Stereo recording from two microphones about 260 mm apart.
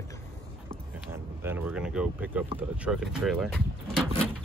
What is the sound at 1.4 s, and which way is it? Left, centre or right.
Speech, centre.